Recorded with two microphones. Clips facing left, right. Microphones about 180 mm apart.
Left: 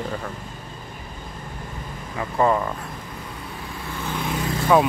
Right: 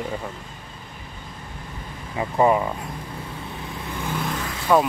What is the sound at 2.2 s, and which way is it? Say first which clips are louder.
Speech: right 2 dB; 15° right (ahead or behind).